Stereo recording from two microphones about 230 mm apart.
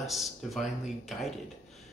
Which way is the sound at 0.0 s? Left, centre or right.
Centre.